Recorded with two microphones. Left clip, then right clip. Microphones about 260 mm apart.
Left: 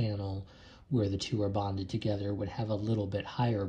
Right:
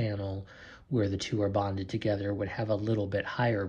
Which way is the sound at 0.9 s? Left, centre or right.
Centre.